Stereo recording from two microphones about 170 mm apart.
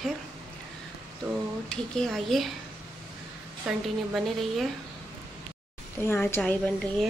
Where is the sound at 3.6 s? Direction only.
Centre (ahead or behind).